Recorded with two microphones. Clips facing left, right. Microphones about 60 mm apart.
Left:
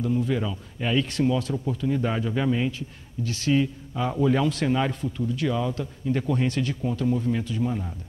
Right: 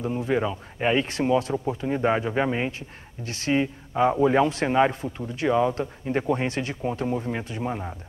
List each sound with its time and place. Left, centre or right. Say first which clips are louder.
0.0 s a man's voice: right 1 dB; right